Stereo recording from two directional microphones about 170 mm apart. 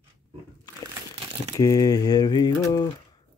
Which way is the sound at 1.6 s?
20° left (ahead or behind).